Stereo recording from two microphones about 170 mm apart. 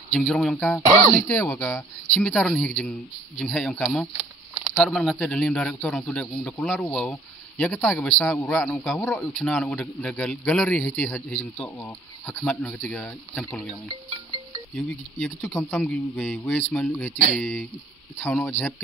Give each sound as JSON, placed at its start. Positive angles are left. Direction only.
{"t": 0.1, "sound": "a man's voice", "side_deg": 5}
{"t": 13.8, "sound": "music", "side_deg": -20}
{"t": 14.8, "sound": "a man's voice", "side_deg": 5}